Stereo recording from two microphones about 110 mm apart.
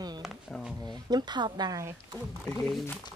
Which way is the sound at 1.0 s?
40° right (ahead or behind).